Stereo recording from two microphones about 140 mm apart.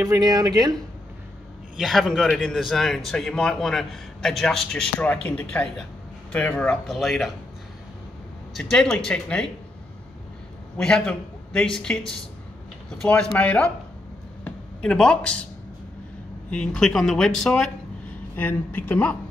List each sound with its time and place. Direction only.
0.0 s speech: 25° right (ahead or behind)
1.8 s a man's voice: centre (ahead or behind)
8.5 s a man's voice: centre (ahead or behind)
10.8 s a man's voice: 5° left (ahead or behind)
13.0 s speech: 5° left (ahead or behind)
14.4 s a sound: 5° left (ahead or behind)
16.4 s a man's voice: 5° left (ahead or behind)